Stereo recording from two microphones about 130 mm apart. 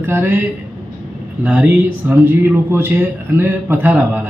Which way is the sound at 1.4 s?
10° right (ahead or behind).